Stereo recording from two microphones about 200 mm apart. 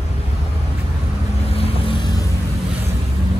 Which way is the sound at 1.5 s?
30° left (ahead or behind).